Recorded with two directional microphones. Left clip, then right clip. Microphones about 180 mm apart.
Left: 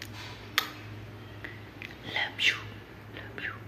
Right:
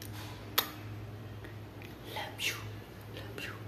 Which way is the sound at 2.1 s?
10° right (ahead or behind).